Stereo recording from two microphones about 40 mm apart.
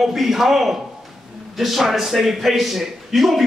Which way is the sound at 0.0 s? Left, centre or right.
Centre.